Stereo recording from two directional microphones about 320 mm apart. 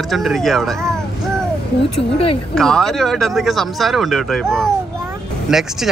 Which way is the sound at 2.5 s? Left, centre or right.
Centre.